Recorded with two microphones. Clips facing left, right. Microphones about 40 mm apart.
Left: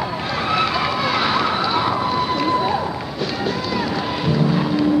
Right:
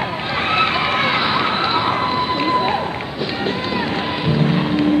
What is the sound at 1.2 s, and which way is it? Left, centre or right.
Run, centre.